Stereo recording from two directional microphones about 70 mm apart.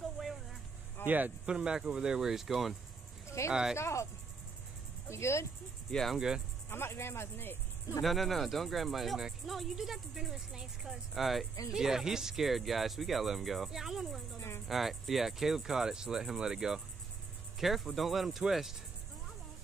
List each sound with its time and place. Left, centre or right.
0.0 s vehicle: centre
1.0 s speech: right
1.4 s speech: centre
3.3 s a sound: left
3.7 s speech: left
5.9 s cricket: centre
6.1 s speech: centre
6.7 s speech: left
8.0 s speech: centre